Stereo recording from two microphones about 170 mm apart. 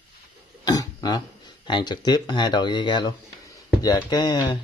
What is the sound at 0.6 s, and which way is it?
Speech, 20° left (ahead or behind).